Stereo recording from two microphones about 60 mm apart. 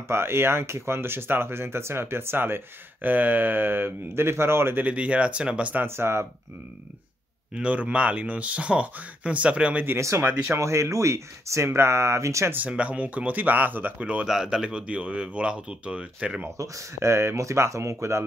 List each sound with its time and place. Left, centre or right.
0.1 s speech: right
4.8 s speech: right
5.9 s speech: right
7.5 s speech: right
9.9 s speech: right
10.2 s speech: right
10.6 s speech: right
12.4 s speech: right
13.9 s speech: centre
14.2 s speech: centre
16.5 s speech: right